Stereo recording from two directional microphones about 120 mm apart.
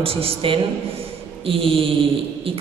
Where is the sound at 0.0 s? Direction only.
45° right (ahead or behind).